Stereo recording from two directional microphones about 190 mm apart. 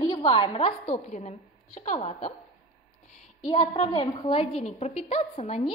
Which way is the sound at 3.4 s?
20° left (ahead or behind).